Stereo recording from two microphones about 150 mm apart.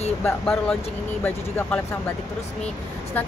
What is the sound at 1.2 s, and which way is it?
Speech, 15° left (ahead or behind).